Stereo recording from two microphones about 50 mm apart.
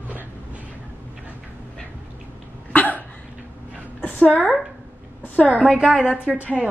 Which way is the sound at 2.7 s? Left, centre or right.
Left.